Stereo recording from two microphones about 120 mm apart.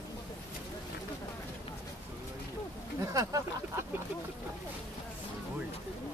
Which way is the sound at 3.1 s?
30° right (ahead or behind).